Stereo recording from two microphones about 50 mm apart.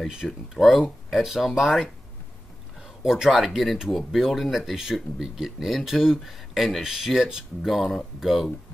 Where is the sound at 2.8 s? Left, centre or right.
Centre.